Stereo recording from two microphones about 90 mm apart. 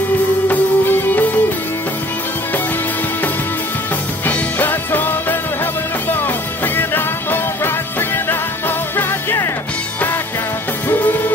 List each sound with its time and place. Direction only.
0.5 s music: 25° left (ahead or behind)
4.3 s music: 20° left (ahead or behind)
10.9 s music: 25° left (ahead or behind)